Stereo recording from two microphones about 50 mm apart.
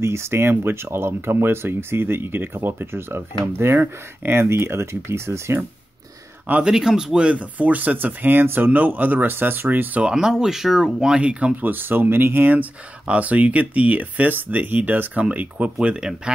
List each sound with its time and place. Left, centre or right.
0.0 s speech: right
6.6 s speech: centre; by 10.0 s right
10.0 s speech: centre
11.5 s speech: right
13.0 s speech: right